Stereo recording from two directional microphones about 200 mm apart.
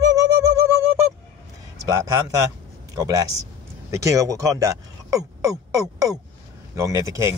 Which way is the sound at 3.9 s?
15° right (ahead or behind).